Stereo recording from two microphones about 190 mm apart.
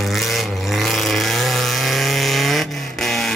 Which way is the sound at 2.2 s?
Centre (ahead or behind).